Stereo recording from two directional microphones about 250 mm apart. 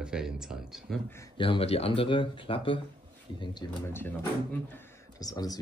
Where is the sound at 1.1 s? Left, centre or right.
Centre.